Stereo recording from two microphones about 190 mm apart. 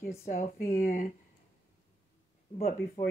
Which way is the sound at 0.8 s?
45° left (ahead or behind).